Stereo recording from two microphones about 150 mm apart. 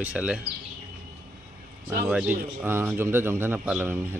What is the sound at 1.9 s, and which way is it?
Speech, 10° right (ahead or behind).